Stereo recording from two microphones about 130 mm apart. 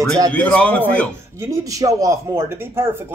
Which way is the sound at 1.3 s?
25° right (ahead or behind).